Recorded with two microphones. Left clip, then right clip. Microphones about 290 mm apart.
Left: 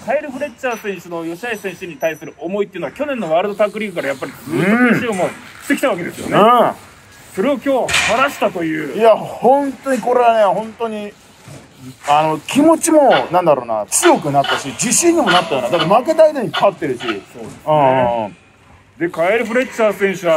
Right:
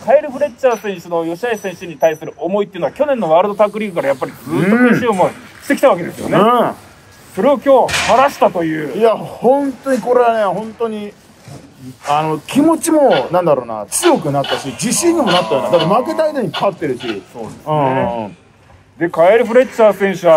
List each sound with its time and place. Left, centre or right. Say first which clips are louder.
0.0 s a man's voice: right 7 dB; right
4.6 s speech: right 1 dB; centre
5.7 s a man's voice: right 5 dB; right
6.4 s speech: left 2 dB; centre
7.3 s a man's voice: right 6 dB; right
8.9 s a man's voice: left 3 dB; centre
12.1 s a man's voice: left 2 dB; centre
18.9 s a man's voice: right 6 dB; right